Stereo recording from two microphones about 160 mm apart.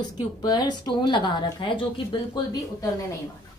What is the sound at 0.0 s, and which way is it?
Speech, 25° left (ahead or behind).